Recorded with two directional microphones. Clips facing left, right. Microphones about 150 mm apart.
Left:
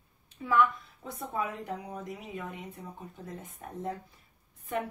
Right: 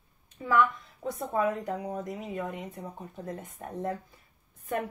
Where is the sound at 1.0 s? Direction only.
45° right (ahead or behind).